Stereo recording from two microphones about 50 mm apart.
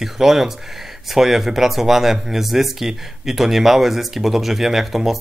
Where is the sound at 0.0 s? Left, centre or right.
Centre.